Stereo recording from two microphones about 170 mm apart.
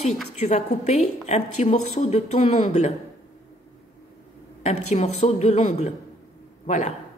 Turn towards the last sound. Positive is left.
turn(degrees=45)  # may be behind; listen again after turning